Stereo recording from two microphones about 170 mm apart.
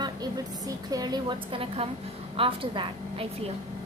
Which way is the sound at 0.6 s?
20° right (ahead or behind).